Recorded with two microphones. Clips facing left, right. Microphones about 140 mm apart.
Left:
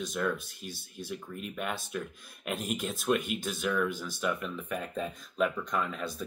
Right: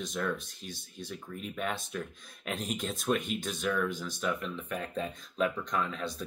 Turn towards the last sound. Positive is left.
turn(degrees=5)  # may be behind; listen again after turning